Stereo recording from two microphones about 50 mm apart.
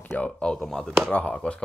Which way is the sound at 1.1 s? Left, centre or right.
Left.